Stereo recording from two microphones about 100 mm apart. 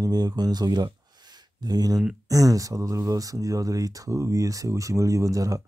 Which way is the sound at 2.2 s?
35° right (ahead or behind).